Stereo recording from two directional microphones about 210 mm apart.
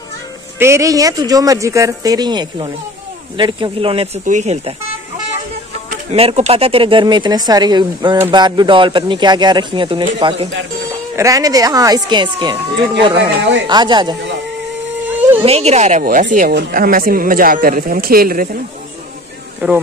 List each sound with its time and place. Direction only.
0.6 s speech: 15° right (ahead or behind); by 4.7 s 30° right (ahead or behind)
5.9 s speech: 30° right (ahead or behind)
11.1 s speech: 15° right (ahead or behind)
13.2 s speech: 55° right (ahead or behind)
13.7 s speech: 20° right (ahead or behind)
15.4 s a woman's voice: 30° right (ahead or behind)
19.6 s speech: 10° right (ahead or behind)